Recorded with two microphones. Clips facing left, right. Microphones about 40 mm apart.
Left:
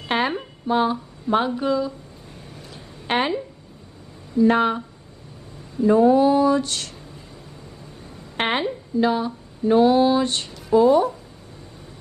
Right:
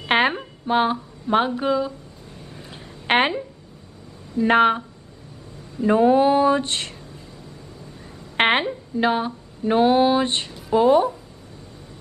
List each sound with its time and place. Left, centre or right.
0.0 s a sound: right
0.7 s speech: right
1.3 s a woman's voice: centre
2.7 s a sound: right
4.4 s speech: right
8.4 s a woman's voice: right
8.9 s music: right
10.8 s speech: right